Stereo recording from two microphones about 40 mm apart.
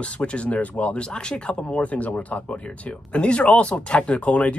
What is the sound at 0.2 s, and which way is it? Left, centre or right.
Speech, left.